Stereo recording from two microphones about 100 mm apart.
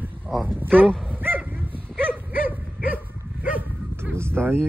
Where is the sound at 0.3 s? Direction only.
5° left (ahead or behind).